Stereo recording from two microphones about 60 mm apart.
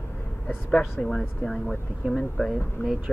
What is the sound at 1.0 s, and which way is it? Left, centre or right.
Speech, centre.